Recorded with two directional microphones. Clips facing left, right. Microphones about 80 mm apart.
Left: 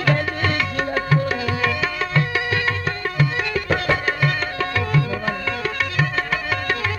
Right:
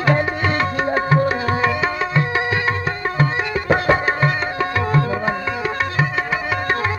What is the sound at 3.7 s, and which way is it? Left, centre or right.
Music, right.